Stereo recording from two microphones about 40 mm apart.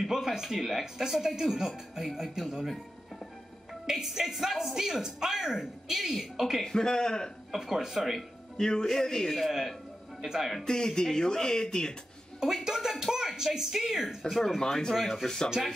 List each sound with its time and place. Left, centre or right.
0.0 s speech: centre
6.6 s speech: centre
7.5 s speech: centre
8.5 s speech: centre
9.3 s speech: centre
10.6 s speech: centre
12.6 s speech: centre
14.0 s speech: centre